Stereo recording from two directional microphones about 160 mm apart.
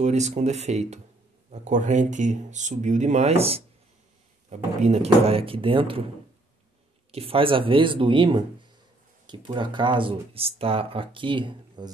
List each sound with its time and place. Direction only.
0.0 s speech: 45° right (ahead or behind)
7.1 s speech: 35° right (ahead or behind)